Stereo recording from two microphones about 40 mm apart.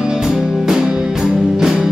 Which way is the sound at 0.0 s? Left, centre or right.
Centre.